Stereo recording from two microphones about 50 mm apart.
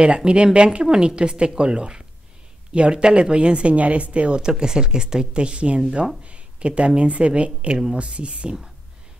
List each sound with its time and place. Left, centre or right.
0.0 s a woman's voice: centre